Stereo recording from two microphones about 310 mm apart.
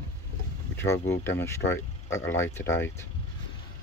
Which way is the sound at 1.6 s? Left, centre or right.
Left.